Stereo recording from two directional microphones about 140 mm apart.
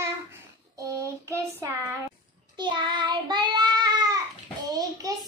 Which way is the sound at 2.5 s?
35° right (ahead or behind).